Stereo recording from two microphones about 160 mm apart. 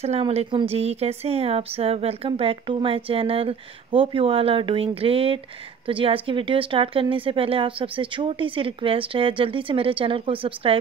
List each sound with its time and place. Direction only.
0.0 s a woman's voice: 40° right (ahead or behind)